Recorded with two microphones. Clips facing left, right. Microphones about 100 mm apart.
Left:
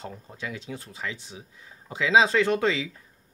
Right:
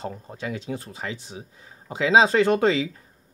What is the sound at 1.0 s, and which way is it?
Speech, 45° right (ahead or behind).